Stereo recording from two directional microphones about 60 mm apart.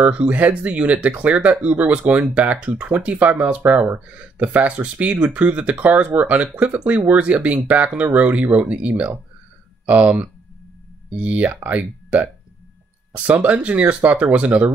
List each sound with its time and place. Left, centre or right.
0.0 s speech: right